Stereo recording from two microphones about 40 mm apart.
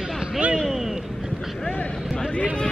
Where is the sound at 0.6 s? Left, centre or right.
Centre.